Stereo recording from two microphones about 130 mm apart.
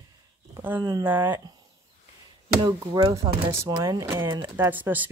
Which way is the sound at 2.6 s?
30° right (ahead or behind).